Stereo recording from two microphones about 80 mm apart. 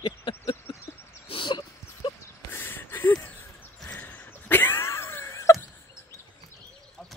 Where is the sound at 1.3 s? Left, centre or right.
Left.